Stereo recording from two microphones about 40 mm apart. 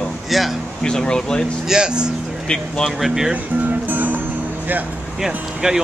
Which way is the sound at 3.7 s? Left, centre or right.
Right.